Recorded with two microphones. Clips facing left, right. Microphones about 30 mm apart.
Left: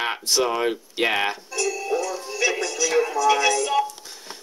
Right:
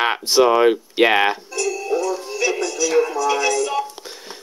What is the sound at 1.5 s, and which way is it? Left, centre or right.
Synthetic singing, centre.